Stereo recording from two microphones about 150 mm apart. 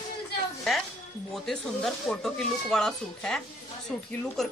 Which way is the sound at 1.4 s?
Centre (ahead or behind).